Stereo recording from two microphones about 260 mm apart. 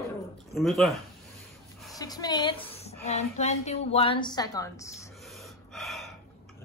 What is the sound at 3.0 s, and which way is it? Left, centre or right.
A woman's voice, left.